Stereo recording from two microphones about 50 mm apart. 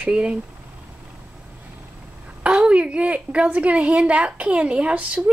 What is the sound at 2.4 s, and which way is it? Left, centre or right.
A woman's voice, right.